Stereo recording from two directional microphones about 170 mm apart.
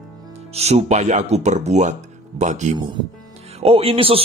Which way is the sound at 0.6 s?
40° right (ahead or behind).